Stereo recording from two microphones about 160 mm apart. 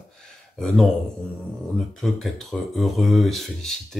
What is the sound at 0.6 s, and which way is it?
Speech, 5° left (ahead or behind).